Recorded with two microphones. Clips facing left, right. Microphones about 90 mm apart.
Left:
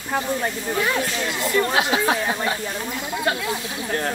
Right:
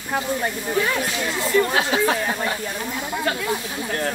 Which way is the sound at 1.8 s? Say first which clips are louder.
Even; 15° left (ahead or behind).